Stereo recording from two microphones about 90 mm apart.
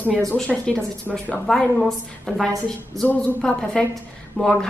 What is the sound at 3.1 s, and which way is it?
Speech, 15° left (ahead or behind).